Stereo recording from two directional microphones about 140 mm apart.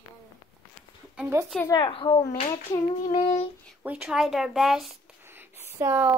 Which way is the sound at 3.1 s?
50° left (ahead or behind).